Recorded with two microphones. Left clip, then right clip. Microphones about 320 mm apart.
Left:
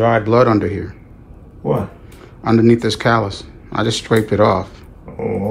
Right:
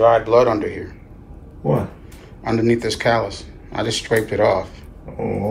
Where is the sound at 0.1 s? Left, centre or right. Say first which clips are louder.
Left 1 dB; left.